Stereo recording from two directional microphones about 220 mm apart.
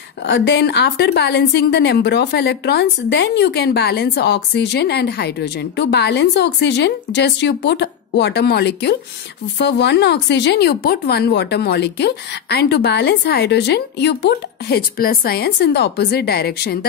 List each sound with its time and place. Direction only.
0.2 s a woman's voice: 50° left (ahead or behind)